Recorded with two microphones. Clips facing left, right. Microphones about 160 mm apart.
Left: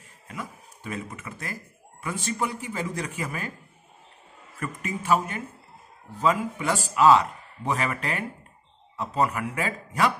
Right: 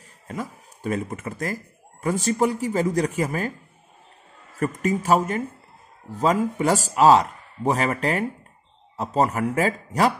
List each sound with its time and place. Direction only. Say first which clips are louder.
0.3 s speech: right 6 dB; 40° right (ahead or behind)
4.6 s speech: right 9 dB; 40° right (ahead or behind)